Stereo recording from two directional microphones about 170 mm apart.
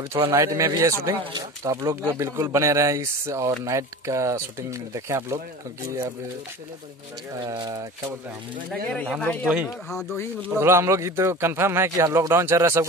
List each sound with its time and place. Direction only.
0.3 s speech: 15° right (ahead or behind)
7.4 s speech: 25° right (ahead or behind)
8.8 s speech: 5° left (ahead or behind)
9.5 s speech: 5° right (ahead or behind)
10.5 s speech: 15° right (ahead or behind)